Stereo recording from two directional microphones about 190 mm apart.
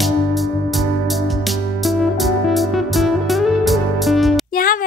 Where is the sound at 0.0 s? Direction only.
Centre (ahead or behind).